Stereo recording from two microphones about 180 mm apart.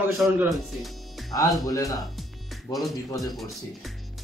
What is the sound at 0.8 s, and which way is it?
Music, centre (ahead or behind).